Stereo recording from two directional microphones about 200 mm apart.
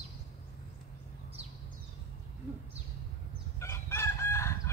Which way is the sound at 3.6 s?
15° left (ahead or behind).